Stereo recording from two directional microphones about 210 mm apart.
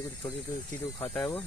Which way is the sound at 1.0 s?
5° left (ahead or behind).